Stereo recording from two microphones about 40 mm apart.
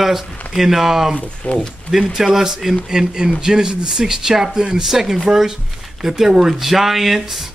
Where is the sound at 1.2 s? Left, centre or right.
Left.